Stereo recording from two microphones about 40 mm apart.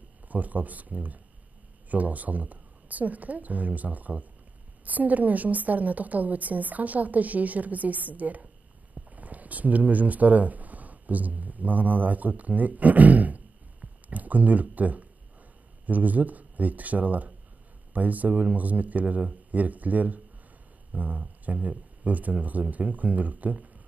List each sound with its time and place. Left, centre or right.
0.3 s a woman's voice: right